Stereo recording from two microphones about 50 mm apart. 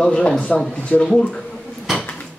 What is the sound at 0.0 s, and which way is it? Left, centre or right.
Speech, centre.